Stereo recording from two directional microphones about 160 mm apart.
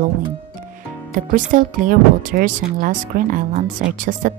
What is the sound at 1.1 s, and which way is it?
Speech, 55° right (ahead or behind).